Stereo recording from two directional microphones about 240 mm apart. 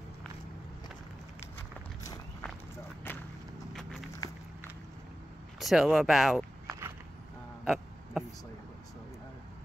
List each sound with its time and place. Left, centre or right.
5.6 s speech: centre
7.6 s hiccup: centre